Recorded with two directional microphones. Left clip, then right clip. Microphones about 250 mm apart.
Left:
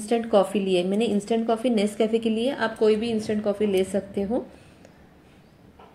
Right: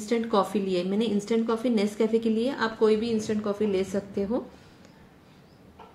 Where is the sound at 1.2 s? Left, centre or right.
Centre.